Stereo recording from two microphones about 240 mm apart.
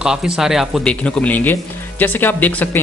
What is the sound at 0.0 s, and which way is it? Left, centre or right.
Speech, centre.